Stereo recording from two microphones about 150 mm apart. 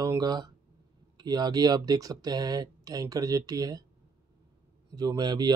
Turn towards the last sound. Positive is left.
turn(degrees=-30)  # may be behind; listen again after turning